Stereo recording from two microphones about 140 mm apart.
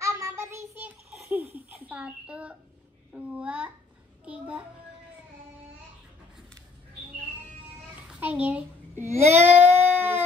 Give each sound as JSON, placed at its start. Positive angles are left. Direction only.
{"t": 0.0, "sound": "child singing", "side_deg": -20}
{"t": 1.1, "sound": "a sound", "side_deg": -10}
{"t": 3.1, "sound": "child singing", "side_deg": -10}
{"t": 8.1, "sound": "a child's voice", "side_deg": -10}